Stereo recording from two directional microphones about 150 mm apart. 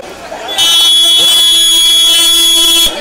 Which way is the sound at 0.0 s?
Centre (ahead or behind).